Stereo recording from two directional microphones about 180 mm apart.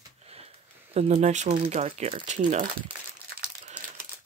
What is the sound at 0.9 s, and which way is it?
Speech, 35° right (ahead or behind).